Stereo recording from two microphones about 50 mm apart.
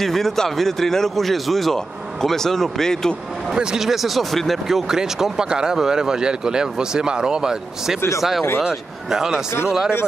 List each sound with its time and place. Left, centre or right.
0.0 s a man's voice: centre
3.5 s a man's voice: centre